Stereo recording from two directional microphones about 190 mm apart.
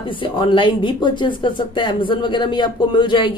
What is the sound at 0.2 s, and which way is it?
Speech, 25° left (ahead or behind).